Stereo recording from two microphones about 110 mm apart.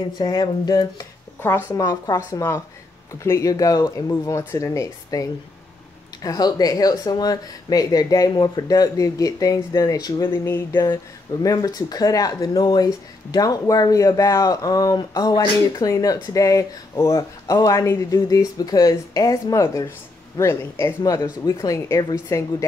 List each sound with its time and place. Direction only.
0.2 s speech: 40° left (ahead or behind)
1.4 s speech: 20° left (ahead or behind)
1.8 s speech: 35° left (ahead or behind)
6.2 s speech: 35° left (ahead or behind)
11.4 s speech: 35° left (ahead or behind)